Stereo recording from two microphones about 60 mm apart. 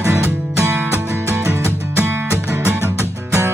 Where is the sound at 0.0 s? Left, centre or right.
Right.